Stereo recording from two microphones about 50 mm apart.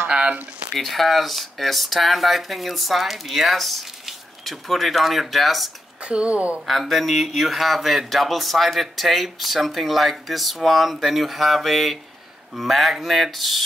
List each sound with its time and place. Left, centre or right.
0.1 s a sound: right
0.7 s speech: centre
6.0 s speech: right
6.7 s speech: centre